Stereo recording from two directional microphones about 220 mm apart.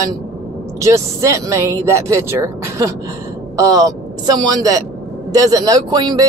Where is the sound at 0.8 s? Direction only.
15° right (ahead or behind).